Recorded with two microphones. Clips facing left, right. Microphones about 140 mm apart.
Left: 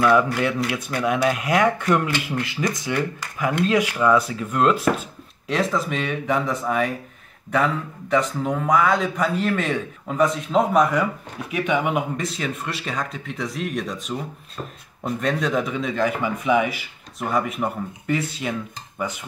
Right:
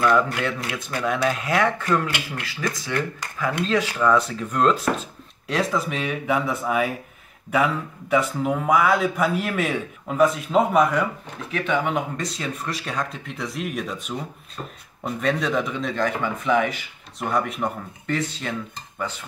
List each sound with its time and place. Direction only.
0.7 s speech: 10° left (ahead or behind)
11.5 s speech: 15° left (ahead or behind); by 13.9 s 5° right (ahead or behind)
15.0 s speech: centre (ahead or behind)